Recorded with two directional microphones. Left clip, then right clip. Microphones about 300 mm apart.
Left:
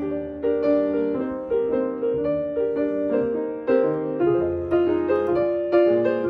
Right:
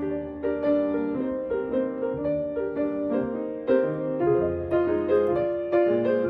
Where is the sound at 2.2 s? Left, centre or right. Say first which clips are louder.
Left 4 dB; centre.